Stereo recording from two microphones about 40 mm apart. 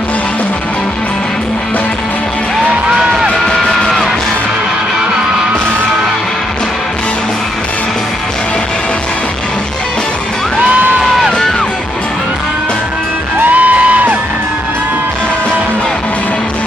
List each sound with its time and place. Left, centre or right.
3.8 s music: centre
13.4 s music: right